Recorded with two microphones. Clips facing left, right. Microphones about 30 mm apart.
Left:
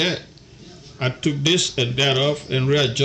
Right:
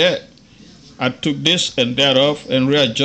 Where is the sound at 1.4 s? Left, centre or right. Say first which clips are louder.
Right 2 dB; right.